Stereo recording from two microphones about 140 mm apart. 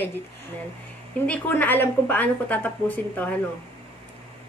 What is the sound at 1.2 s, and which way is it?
A woman's voice, 10° left (ahead or behind).